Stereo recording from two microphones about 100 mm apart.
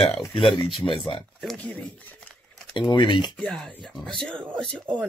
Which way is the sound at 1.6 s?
10° left (ahead or behind).